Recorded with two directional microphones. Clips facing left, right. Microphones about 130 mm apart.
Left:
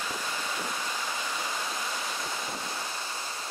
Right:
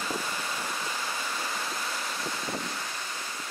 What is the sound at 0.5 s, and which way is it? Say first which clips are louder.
Waterfall: even; centre (ahead or behind).